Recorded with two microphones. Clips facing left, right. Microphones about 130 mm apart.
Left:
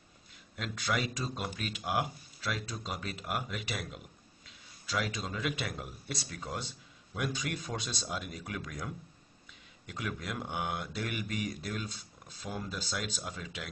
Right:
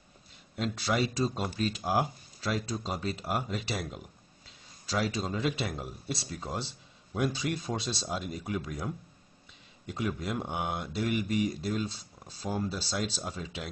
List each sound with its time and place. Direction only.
0.6 s speech: 30° right (ahead or behind)